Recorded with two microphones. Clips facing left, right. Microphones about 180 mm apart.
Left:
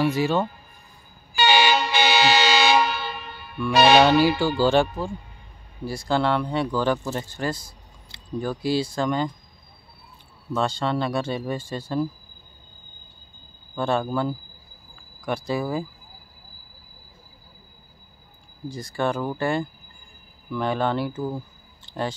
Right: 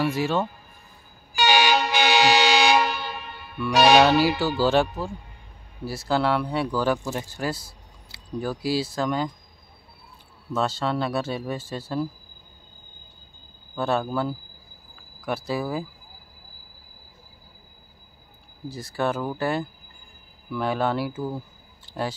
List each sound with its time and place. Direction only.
0.0 s speech: centre (ahead or behind)
1.3 s vehicle: 10° right (ahead or behind)
3.5 s speech: 5° right (ahead or behind)
10.5 s speech: 5° right (ahead or behind)
13.7 s speech: 5° right (ahead or behind)
18.7 s speech: 5° right (ahead or behind)
21.8 s a sound: 5° right (ahead or behind)